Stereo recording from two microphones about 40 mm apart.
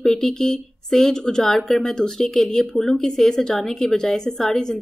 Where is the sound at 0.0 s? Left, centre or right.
Centre.